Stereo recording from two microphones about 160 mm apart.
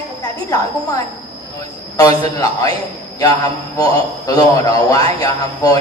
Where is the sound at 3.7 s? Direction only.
20° left (ahead or behind).